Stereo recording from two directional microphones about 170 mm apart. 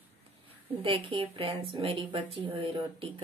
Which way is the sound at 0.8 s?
30° right (ahead or behind).